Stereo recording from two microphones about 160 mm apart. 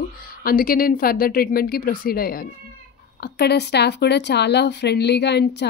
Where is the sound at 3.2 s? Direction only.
90° left.